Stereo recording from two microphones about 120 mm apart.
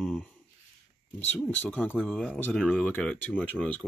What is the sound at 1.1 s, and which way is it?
Speech, 15° left (ahead or behind).